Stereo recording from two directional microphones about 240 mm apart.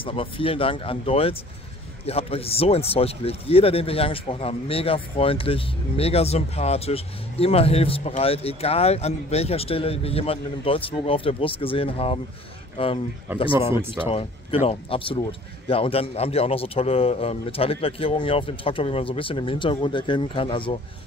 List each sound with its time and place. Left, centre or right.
0.0 s speech: left
13.6 s speech: centre
14.0 s speech: left